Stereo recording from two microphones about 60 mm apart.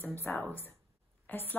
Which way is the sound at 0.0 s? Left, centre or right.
Left.